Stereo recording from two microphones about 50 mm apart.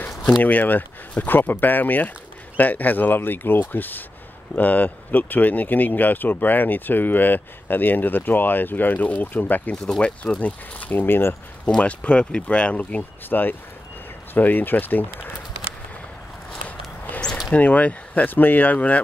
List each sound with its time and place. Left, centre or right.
0.4 s speech: left
9.8 s speech: centre
10.4 s speech: left
11.1 s speech: left
11.8 s speech: left
13.3 s speech: left
17.5 s speech: left